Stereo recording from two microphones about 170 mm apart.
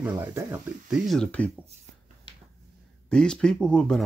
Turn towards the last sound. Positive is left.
turn(degrees=5)  # may be behind; listen again after turning